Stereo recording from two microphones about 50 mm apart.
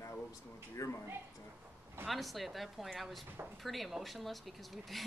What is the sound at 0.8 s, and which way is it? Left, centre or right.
Speech, left.